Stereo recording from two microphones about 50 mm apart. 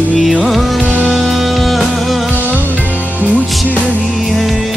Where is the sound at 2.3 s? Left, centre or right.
Right.